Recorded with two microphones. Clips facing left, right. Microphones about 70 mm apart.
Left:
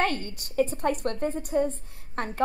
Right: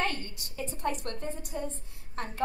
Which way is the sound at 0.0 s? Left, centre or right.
Left.